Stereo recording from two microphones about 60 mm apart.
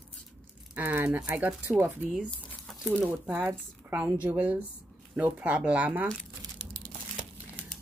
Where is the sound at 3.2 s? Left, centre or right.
Right.